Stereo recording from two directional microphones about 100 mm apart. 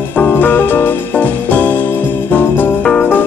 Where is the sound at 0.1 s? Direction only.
20° left (ahead or behind).